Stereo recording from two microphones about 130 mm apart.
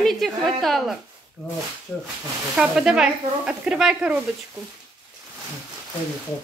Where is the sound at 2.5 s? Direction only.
5° right (ahead or behind).